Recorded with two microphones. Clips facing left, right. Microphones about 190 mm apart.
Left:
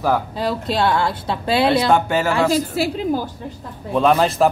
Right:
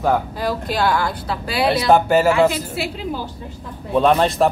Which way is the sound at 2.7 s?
45° left (ahead or behind).